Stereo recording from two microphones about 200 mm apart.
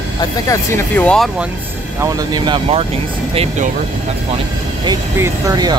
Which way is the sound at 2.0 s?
20° right (ahead or behind).